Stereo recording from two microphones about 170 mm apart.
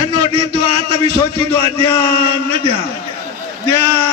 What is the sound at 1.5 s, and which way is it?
Speech, 15° left (ahead or behind).